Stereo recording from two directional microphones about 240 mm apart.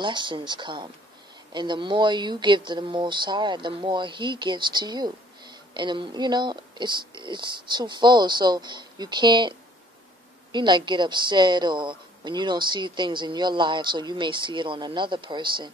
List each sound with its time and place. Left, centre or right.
0.0 s a woman's voice: centre